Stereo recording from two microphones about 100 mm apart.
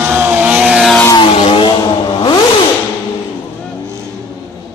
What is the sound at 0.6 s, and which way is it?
Vehicle, 10° right (ahead or behind).